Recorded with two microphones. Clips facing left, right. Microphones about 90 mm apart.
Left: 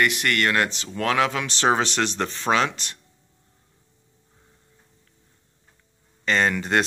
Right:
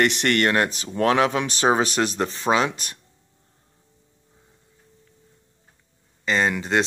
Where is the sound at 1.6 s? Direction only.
15° right (ahead or behind).